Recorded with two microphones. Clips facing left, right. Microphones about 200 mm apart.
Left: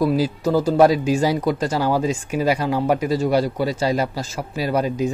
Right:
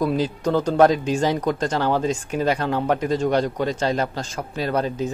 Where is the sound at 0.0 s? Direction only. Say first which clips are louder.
Left 2 dB; 5° left (ahead or behind).